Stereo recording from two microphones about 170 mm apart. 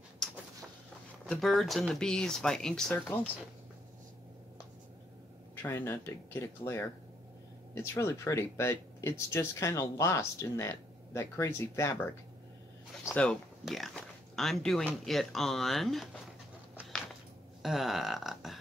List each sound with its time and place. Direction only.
0.2 s a sound: 5° left (ahead or behind)
1.2 s speech: centre (ahead or behind)
5.6 s speech: 15° left (ahead or behind)
17.6 s speech: centre (ahead or behind)